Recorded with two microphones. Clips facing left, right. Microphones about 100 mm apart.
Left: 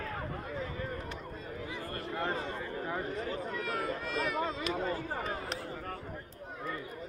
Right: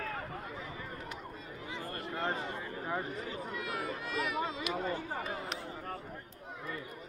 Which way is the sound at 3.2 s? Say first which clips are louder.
Left 3 dB; 40° left (ahead or behind).